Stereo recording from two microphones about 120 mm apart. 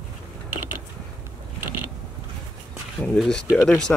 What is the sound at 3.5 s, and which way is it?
Speech, 15° left (ahead or behind).